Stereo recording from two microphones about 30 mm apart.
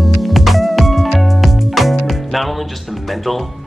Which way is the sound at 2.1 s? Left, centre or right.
Centre.